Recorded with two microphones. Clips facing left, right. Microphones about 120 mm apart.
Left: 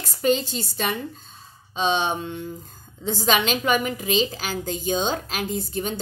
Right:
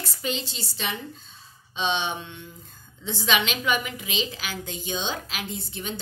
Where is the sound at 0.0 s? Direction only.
45° left (ahead or behind).